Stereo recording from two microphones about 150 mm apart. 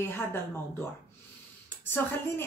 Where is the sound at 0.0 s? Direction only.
15° left (ahead or behind).